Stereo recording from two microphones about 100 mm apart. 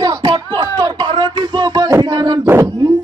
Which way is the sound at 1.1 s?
45° right (ahead or behind).